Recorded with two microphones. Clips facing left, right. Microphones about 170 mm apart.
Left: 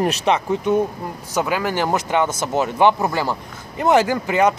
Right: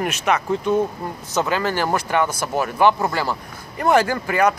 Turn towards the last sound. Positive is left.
turn(degrees=20)  # may be behind; listen again after turning